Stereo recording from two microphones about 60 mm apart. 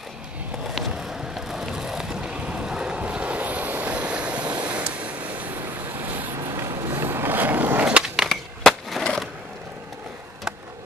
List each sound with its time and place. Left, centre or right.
0.7 s vehicle: centre; by 6.2 s right
6.5 s vehicle: right
6.9 s skateboard: right
8.3 s skateboard: centre